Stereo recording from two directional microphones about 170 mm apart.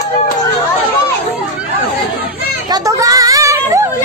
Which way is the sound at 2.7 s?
20° right (ahead or behind).